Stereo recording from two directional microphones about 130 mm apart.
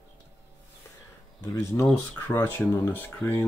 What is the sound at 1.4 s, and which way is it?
Speech, 20° left (ahead or behind).